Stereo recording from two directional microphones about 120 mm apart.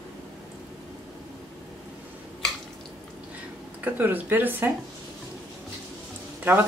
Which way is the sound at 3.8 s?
15° right (ahead or behind).